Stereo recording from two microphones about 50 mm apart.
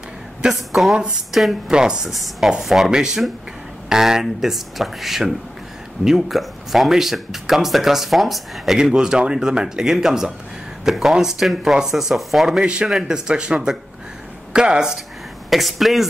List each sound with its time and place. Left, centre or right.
0.5 s speech: centre
1.7 s speech: centre
2.0 s speech: centre
8.7 s speech: centre
12.5 s speech: centre
15.5 s speech: centre